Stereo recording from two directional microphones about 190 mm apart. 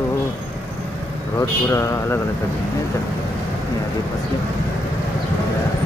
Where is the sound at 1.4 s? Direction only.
15° left (ahead or behind).